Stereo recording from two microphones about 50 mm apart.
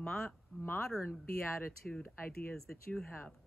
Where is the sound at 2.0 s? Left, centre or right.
Left.